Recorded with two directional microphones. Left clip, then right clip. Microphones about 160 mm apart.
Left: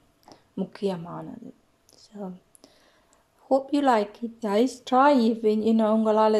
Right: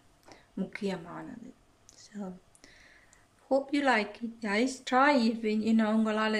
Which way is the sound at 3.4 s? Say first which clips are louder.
Left 5 dB; 10° left (ahead or behind).